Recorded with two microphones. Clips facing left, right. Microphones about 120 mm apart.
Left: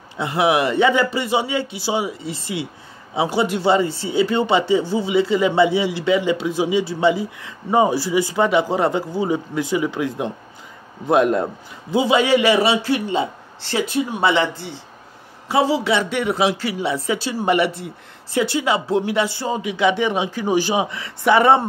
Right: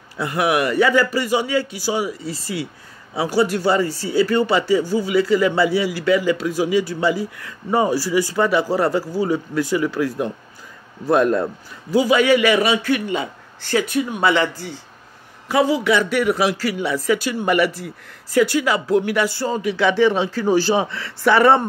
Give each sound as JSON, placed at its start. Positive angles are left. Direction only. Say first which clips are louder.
{"t": 0.2, "sound": "a man's voice", "louder": "left 1 dB", "side_deg": 25}